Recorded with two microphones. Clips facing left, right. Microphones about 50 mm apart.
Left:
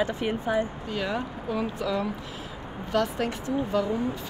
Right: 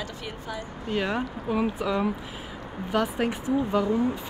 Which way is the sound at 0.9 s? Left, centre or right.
Right.